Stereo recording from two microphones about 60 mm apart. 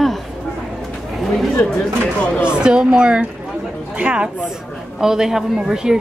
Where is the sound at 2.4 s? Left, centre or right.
Centre.